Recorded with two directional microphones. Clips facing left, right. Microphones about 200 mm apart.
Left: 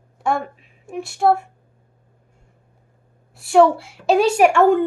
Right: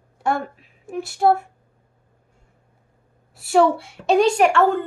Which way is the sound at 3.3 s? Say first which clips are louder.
Left 3 dB; centre (ahead or behind).